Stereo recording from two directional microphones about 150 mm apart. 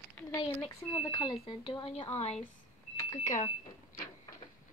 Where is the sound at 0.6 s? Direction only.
25° left (ahead or behind).